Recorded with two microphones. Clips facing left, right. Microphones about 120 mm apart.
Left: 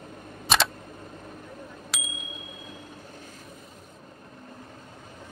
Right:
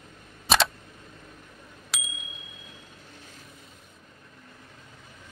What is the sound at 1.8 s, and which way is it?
Bicycle bell, centre (ahead or behind).